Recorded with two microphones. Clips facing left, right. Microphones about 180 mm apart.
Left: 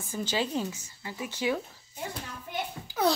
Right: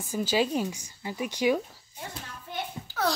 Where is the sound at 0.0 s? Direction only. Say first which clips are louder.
Right 4 dB; 10° right (ahead or behind).